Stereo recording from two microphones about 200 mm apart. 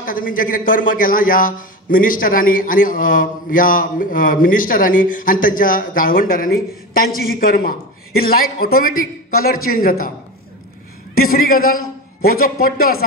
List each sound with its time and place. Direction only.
0.0 s speech: 45° left (ahead or behind)
11.1 s speech: 45° left (ahead or behind)